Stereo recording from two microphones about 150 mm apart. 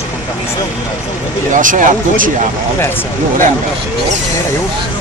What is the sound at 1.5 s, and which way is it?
Speech, 60° right (ahead or behind).